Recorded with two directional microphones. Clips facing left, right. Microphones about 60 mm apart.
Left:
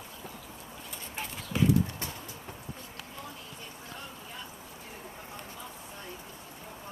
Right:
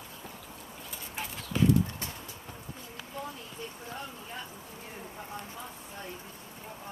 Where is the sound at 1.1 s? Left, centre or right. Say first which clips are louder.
Even; centre.